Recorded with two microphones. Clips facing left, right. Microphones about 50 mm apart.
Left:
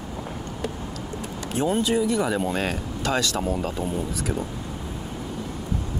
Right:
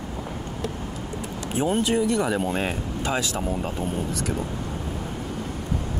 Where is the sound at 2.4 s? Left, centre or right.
Centre.